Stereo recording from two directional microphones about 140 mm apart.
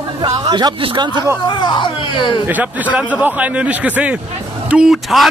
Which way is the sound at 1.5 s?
35° left (ahead or behind).